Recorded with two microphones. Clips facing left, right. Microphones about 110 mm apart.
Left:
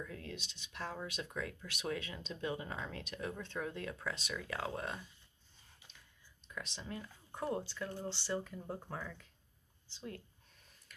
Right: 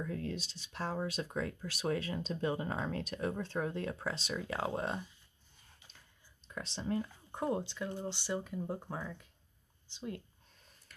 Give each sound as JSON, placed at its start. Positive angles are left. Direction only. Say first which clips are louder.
{"t": 0.0, "sound": "speech", "louder": "right 7 dB", "side_deg": -40}
{"t": 6.4, "sound": "speech", "louder": "right 6 dB", "side_deg": -35}